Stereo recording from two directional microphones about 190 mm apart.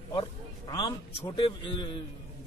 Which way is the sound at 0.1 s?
20° left (ahead or behind).